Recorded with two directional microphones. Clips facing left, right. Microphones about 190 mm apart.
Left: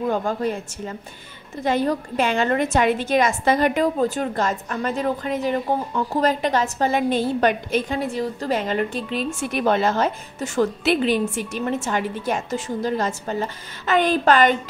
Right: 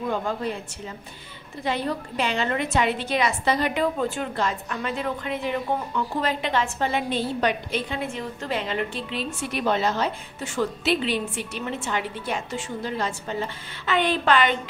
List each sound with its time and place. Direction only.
0.1 s a woman's voice: 45° left (ahead or behind)